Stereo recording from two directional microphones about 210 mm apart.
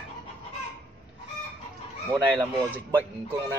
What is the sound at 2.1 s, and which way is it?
Speech, 15° right (ahead or behind).